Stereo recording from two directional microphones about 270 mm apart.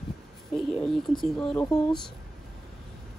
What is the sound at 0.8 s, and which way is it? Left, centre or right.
A woman's voice, centre.